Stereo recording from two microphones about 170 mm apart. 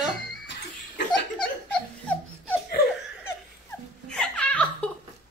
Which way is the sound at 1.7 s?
10° left (ahead or behind).